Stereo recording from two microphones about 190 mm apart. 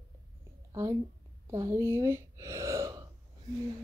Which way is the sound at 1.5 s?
15° right (ahead or behind).